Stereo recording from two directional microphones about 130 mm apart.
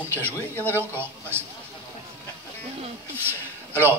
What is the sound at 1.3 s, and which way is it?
Speech, 15° right (ahead or behind).